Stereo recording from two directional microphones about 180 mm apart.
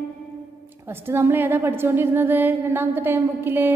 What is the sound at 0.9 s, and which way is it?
A woman's voice, 15° right (ahead or behind).